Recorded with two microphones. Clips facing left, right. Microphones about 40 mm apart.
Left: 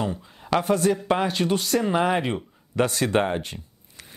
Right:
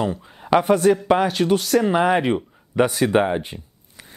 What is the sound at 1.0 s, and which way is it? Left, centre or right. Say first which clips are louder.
Speech: right 5 dB; centre.